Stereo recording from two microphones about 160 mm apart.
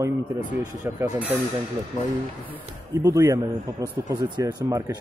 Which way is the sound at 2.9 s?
20° right (ahead or behind).